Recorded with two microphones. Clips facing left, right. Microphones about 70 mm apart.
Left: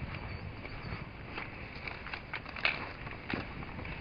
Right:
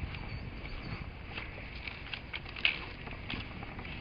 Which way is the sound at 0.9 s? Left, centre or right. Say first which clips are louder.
Left 1 dB; left.